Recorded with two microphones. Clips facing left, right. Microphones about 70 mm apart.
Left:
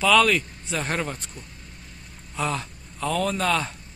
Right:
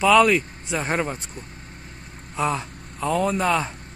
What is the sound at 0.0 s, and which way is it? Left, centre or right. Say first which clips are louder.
Speech: right 3 dB; centre.